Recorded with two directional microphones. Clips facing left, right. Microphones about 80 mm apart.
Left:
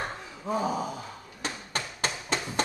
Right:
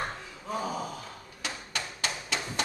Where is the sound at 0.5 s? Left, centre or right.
Centre.